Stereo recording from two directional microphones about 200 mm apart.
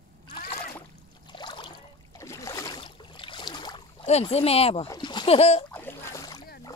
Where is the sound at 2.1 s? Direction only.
15° left (ahead or behind).